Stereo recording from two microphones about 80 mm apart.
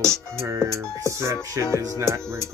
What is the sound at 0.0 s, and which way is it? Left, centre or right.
Speech, centre.